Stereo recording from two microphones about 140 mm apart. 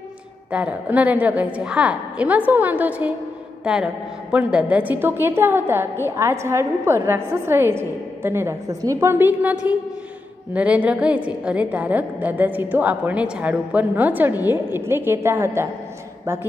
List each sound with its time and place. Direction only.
0.5 s a woman's voice: 10° right (ahead or behind)